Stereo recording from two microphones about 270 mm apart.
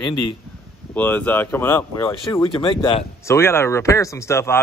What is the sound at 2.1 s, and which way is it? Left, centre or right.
Speech, centre.